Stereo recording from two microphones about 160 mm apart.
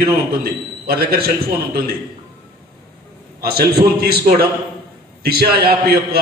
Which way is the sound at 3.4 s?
75° right (ahead or behind).